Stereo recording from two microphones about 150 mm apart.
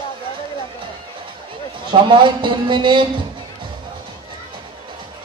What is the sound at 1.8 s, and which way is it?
A man's voice, 35° right (ahead or behind).